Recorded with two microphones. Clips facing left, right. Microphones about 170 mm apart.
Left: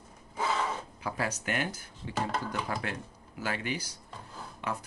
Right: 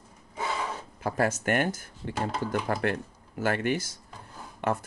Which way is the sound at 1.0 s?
45° right (ahead or behind).